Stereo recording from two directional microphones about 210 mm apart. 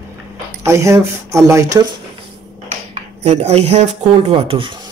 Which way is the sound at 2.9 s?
30° right (ahead or behind).